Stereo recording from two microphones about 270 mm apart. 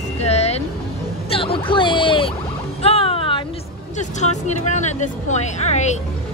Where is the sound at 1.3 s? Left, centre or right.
Centre.